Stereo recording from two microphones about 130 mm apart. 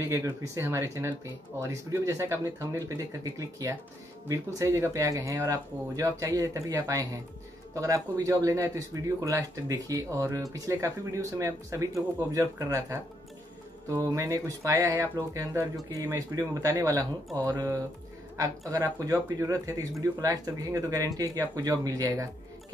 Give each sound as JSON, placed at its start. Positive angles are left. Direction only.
{"t": 0.0, "sound": "speech", "side_deg": -25}